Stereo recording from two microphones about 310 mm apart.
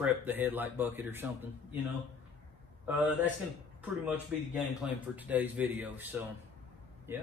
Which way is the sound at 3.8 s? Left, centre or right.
Centre.